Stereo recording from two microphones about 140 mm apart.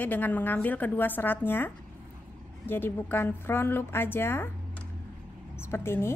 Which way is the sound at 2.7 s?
15° left (ahead or behind).